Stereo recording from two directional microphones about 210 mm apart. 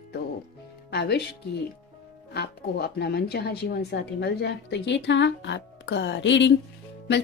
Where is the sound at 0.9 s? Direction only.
50° left (ahead or behind).